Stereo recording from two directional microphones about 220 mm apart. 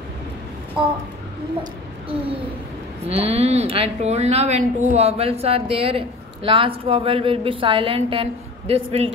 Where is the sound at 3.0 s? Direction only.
30° right (ahead or behind).